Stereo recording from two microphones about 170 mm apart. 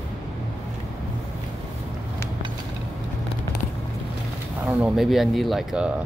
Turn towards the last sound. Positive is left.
turn(degrees=-5)  # may be behind; listen again after turning